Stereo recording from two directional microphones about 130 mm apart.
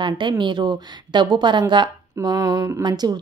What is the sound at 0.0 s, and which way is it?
A woman's voice, 35° right (ahead or behind).